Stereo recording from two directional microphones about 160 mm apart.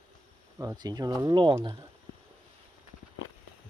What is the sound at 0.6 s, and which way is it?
Speech, 20° right (ahead or behind).